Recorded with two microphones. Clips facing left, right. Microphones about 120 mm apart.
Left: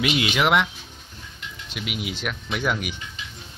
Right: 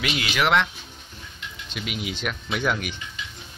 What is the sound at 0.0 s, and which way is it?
Speech, 20° left (ahead or behind).